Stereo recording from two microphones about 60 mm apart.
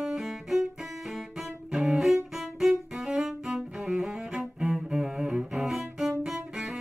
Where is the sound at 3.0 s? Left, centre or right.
Centre.